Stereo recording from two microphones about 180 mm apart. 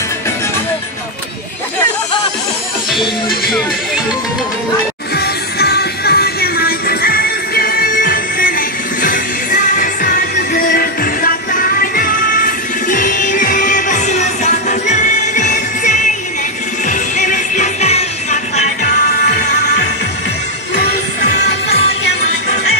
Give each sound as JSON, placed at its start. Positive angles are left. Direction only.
{"t": 2.9, "sound": "music", "side_deg": 0}
{"t": 5.1, "sound": "music", "side_deg": 65}